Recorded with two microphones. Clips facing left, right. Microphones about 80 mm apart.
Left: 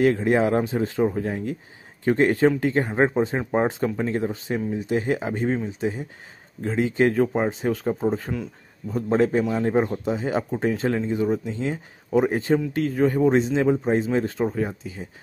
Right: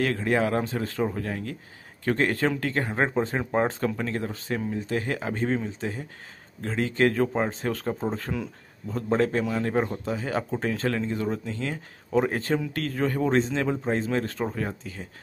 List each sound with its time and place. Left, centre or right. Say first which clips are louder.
0.0 s a man's voice: left 5 dB; left